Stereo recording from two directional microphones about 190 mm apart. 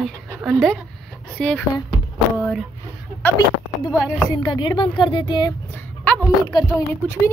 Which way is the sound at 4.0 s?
25° left (ahead or behind).